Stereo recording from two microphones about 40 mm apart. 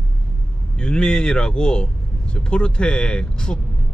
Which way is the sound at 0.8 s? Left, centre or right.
Left.